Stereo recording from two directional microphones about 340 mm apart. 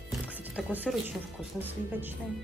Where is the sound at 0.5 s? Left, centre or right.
Centre.